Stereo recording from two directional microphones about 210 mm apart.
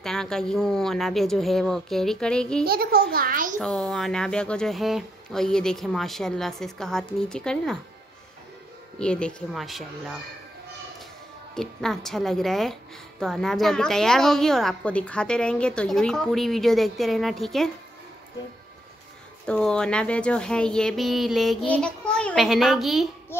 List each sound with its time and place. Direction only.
0.0 s a woman's voice: centre (ahead or behind)
2.6 s a child's voice: 45° right (ahead or behind)
3.5 s a woman's voice: 5° left (ahead or behind)
9.0 s a woman's voice: 5° left (ahead or behind)
11.5 s a woman's voice: centre (ahead or behind)
19.4 s a woman's voice: 5° left (ahead or behind)